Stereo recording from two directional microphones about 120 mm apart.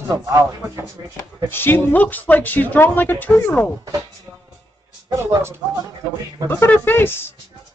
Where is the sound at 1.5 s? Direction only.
15° left (ahead or behind).